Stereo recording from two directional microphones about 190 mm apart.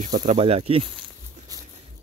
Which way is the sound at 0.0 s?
40° right (ahead or behind).